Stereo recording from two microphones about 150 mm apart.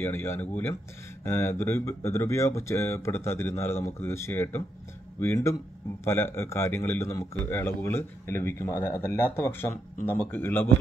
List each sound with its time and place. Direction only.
0.0 s speech: 15° left (ahead or behind)